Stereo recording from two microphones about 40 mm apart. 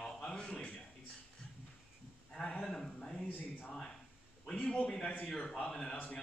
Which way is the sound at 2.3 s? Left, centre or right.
Left.